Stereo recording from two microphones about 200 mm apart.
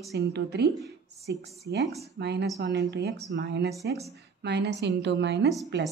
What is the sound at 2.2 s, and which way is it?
A woman's voice, 55° right (ahead or behind).